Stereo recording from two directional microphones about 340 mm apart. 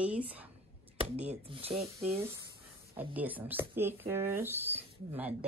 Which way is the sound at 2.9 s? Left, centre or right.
Centre.